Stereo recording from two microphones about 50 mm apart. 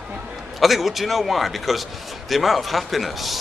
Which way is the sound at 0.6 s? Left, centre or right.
Centre.